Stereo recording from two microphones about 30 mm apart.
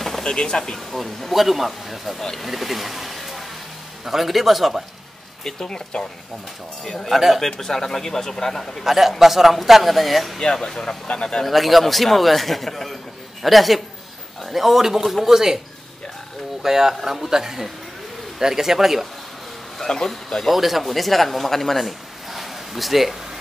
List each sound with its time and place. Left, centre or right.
0.2 s speech: left
0.7 s a man's voice: centre
5.4 s speech: centre
7.3 s speech: centre
8.8 s a man's voice: centre
10.4 s speech: left
11.4 s a man's voice: centre
16.6 s a man's voice: centre
20.1 s speech: centre
20.4 s speech: centre